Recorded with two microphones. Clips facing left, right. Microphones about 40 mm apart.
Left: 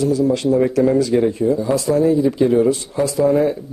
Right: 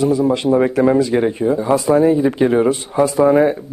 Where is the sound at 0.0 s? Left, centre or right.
Right.